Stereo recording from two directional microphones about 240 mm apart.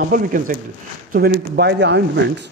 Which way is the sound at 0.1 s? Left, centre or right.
Right.